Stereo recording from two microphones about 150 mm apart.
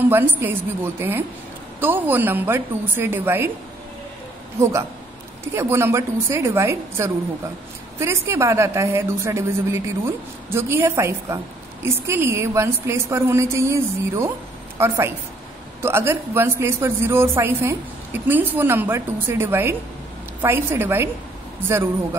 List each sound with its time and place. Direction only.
0.0 s a woman's voice: 15° right (ahead or behind)
4.6 s a woman's voice: 20° right (ahead or behind)